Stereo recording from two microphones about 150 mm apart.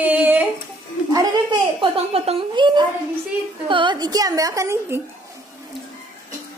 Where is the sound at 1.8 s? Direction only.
35° right (ahead or behind); by 4.9 s 20° right (ahead or behind).